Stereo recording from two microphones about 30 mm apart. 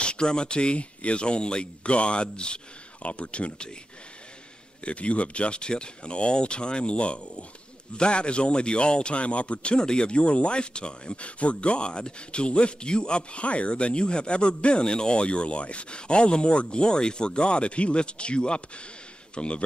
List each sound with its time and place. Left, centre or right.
0.0 s a man's voice: left
3.1 s a man's voice: left
4.8 s a man's voice: left